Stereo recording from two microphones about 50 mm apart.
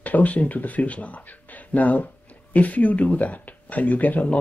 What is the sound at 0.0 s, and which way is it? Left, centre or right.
Speech, left.